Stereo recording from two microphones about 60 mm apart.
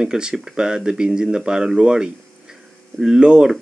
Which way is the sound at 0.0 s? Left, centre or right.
Centre.